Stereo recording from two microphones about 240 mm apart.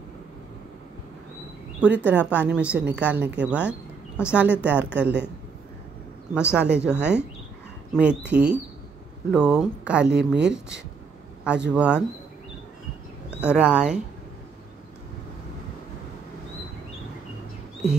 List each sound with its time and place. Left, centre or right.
1.8 s a woman's voice: centre
6.5 s a woman's voice: centre
10.0 s speech: right
10.4 s a woman's voice: centre
13.4 s a woman's voice: centre